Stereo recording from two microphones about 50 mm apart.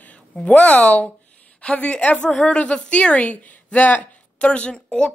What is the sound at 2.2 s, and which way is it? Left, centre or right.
A woman's voice, centre.